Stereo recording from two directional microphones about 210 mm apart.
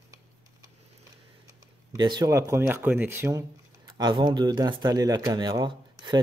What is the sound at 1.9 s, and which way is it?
Speech, 20° right (ahead or behind).